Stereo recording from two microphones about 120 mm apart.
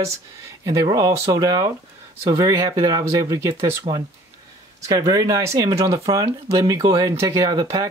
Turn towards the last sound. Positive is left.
turn(degrees=-30)  # may be behind; listen again after turning